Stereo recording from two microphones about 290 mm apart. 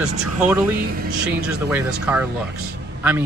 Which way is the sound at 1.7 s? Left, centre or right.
Centre.